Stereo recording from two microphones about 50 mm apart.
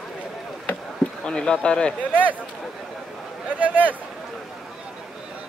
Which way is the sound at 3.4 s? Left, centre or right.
Right.